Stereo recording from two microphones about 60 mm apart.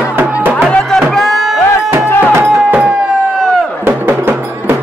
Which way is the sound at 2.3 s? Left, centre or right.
Right.